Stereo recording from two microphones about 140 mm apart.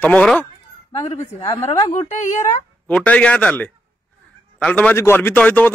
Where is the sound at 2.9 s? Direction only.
10° left (ahead or behind).